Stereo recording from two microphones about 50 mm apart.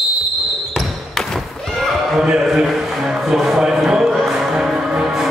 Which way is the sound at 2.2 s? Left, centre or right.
Centre.